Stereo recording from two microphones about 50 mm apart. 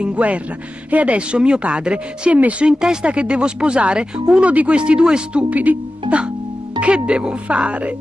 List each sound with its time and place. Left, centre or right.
0.0 s a woman's voice: right
2.8 s a woman's voice: centre
5.5 s a woman's voice: right